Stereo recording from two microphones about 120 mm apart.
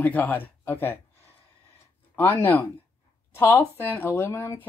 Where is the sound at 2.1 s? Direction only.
15° left (ahead or behind).